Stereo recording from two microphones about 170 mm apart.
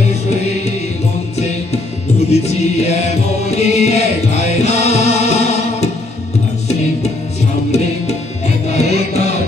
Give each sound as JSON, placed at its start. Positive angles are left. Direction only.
{"t": 2.3, "sound": "music", "side_deg": 40}
{"t": 8.6, "sound": "music", "side_deg": 40}